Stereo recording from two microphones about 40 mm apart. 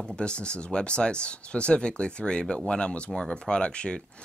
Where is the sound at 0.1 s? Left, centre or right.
Left.